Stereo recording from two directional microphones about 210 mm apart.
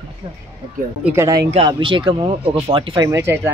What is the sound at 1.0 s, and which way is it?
Speech, 15° right (ahead or behind).